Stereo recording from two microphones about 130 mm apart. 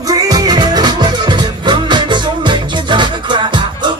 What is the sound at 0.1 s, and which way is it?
Music, 30° right (ahead or behind).